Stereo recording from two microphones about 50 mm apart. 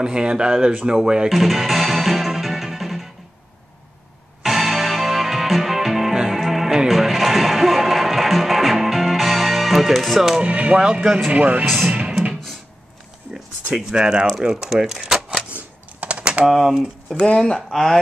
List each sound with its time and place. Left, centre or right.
0.0 s speech: centre
1.3 s music: centre
4.4 s music: centre
10.4 s speech: right
11.6 s speech: centre
11.9 s music: right
13.9 s speech: centre
15.5 s typing: right
16.4 s speech: centre
17.1 s speech: left